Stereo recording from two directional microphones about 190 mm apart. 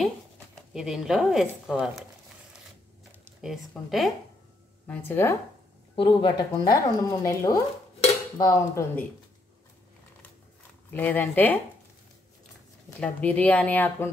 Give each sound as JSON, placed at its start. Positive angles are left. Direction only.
{"t": 0.6, "sound": "speech", "side_deg": 0}
{"t": 3.1, "sound": "speech", "side_deg": -5}
{"t": 4.8, "sound": "speech", "side_deg": 10}
{"t": 5.9, "sound": "speech", "side_deg": 25}
{"t": 10.9, "sound": "speech", "side_deg": 10}
{"t": 13.0, "sound": "speech", "side_deg": 5}